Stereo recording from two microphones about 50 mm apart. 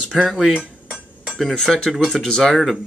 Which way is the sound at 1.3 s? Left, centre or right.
Centre.